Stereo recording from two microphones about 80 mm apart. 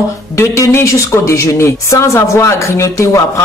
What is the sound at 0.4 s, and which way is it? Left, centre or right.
Speech, left.